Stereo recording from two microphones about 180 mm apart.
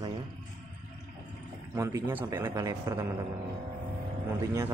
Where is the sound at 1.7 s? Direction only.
15° right (ahead or behind).